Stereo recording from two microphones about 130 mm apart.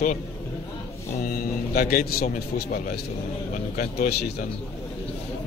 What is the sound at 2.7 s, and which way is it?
Speech, 90° left.